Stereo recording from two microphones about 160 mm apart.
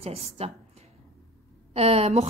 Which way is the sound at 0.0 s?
40° right (ahead or behind).